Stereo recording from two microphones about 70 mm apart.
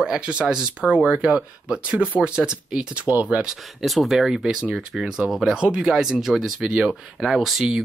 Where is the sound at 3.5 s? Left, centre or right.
Centre.